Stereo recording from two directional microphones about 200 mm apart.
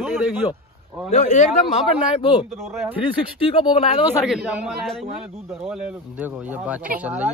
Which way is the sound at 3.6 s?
25° left (ahead or behind).